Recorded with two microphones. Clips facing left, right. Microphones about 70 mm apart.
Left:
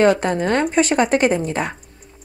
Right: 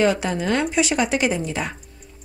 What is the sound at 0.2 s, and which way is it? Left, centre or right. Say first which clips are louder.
Speech: left 3 dB; left.